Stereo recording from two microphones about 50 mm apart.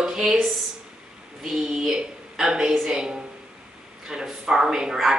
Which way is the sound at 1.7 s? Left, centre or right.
Centre.